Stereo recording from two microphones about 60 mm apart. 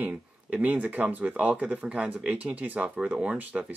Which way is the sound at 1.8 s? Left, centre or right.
Centre.